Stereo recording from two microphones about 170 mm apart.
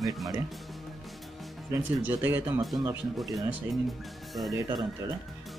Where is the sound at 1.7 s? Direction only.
10° right (ahead or behind).